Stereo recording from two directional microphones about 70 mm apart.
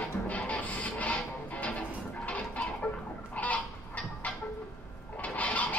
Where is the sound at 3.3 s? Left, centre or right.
Left.